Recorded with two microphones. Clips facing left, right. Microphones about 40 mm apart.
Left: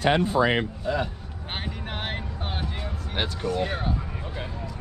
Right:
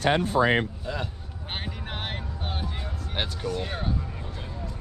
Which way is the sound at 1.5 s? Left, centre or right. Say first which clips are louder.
Left 2 dB; centre.